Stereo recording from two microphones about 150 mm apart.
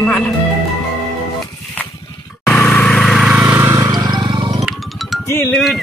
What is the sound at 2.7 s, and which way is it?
Vehicle, 5° left (ahead or behind).